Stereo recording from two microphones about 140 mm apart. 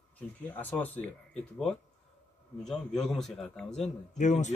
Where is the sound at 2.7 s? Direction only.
5° left (ahead or behind).